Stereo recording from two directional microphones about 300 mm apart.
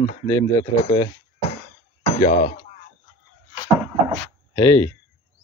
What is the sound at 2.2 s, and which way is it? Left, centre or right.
Speech, left.